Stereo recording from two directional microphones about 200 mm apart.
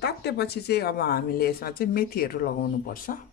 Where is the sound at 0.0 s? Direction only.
55° left (ahead or behind).